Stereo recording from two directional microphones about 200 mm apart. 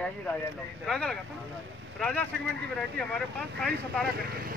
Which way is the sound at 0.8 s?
5° left (ahead or behind).